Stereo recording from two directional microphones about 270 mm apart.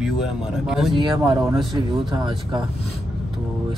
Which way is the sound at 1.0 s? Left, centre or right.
Centre.